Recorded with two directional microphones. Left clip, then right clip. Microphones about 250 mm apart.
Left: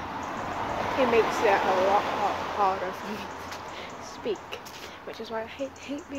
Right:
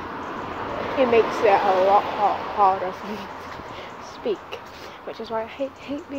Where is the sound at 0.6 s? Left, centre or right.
Left.